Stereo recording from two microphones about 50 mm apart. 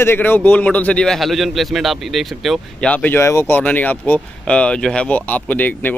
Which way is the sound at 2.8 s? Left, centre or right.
Left.